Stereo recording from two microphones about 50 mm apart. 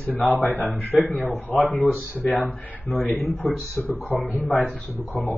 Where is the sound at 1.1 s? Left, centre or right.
Left.